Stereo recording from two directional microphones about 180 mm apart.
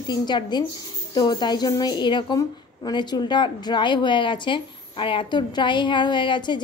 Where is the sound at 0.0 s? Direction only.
25° left (ahead or behind).